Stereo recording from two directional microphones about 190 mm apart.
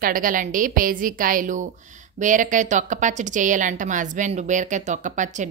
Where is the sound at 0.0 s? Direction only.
45° right (ahead or behind).